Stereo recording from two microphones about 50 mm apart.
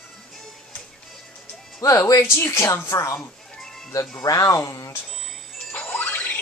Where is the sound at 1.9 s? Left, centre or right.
Left.